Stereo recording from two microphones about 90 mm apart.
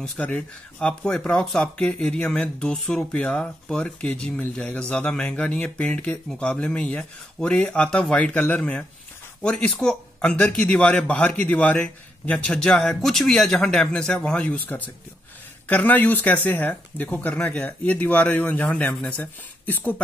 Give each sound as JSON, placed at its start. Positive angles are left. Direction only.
{"t": 0.0, "sound": "speech", "side_deg": 15}